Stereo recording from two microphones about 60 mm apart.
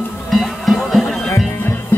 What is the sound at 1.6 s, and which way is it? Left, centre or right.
Music, left.